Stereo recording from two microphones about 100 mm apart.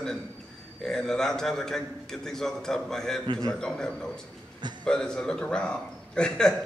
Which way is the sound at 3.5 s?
5° left (ahead or behind).